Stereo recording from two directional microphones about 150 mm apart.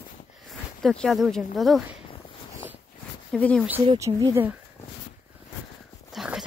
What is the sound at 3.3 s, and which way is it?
Speech, 5° left (ahead or behind).